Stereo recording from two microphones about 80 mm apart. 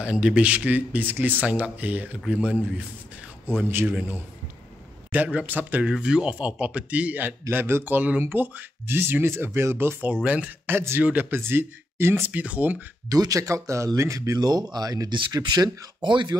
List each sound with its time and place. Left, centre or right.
0.0 s speech: centre
5.1 s a man's voice: centre
5.9 s speech: centre; by 10.1 s right
10.2 s speech: centre
10.7 s speech: right
13.1 s speech: right
15.1 s speech: right
16.1 s speech: right